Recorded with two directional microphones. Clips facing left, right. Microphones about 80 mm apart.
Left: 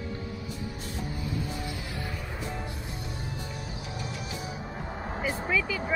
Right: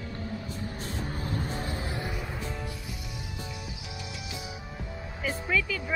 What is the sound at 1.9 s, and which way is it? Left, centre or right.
Music, right.